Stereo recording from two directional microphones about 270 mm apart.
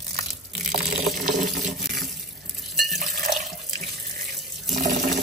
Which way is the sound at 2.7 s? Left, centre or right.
Right.